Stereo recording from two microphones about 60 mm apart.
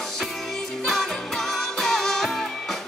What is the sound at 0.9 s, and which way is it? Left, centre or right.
Music, centre.